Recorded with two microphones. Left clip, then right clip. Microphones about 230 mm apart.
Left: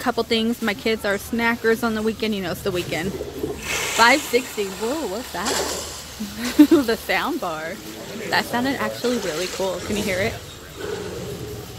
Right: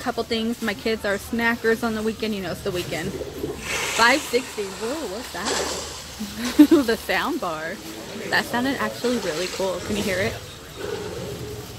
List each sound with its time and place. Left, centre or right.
0.0 s speech: centre
3.6 s snake: left
4.0 s speech: centre
5.4 s speech: left
6.4 s speech: centre